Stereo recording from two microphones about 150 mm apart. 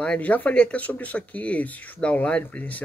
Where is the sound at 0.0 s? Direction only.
10° left (ahead or behind).